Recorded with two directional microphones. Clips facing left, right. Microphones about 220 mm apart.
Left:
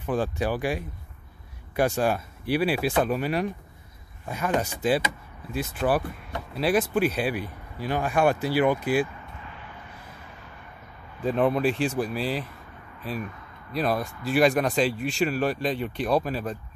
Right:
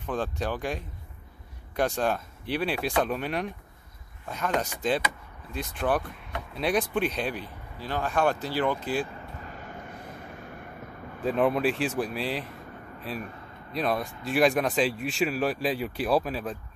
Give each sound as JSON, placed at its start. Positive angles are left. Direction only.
{"t": 0.0, "sound": "speech", "side_deg": 10}
{"t": 9.4, "sound": "vehicle", "side_deg": -45}
{"t": 11.2, "sound": "speech", "side_deg": 0}
{"t": 13.7, "sound": "speech", "side_deg": 0}